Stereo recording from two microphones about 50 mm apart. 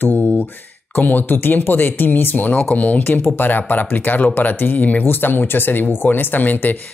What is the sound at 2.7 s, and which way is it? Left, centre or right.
Speech, left.